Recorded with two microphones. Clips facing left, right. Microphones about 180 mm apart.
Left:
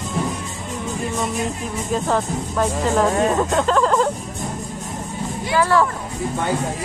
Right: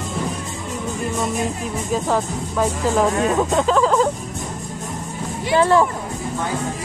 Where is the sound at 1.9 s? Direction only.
5° right (ahead or behind).